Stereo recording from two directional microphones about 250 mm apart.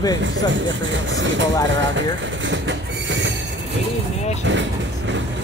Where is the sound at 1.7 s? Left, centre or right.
Right.